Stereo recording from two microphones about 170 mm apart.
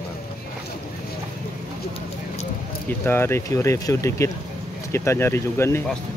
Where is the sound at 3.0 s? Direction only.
15° left (ahead or behind).